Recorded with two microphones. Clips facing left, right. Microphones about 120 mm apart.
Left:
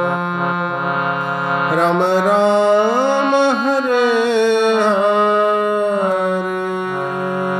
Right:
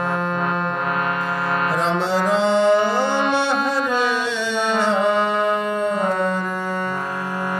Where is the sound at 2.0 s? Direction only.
55° left (ahead or behind).